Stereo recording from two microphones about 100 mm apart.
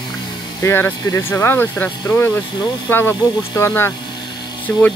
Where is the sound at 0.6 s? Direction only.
25° left (ahead or behind).